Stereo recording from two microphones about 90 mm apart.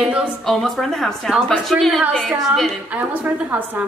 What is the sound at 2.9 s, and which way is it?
Speech, 15° right (ahead or behind).